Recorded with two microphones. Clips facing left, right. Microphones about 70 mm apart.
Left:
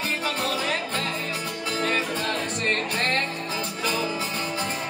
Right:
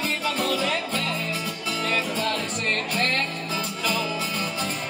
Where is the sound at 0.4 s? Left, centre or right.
Left.